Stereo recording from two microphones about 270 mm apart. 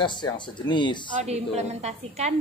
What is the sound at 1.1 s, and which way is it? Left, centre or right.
A woman's voice, right.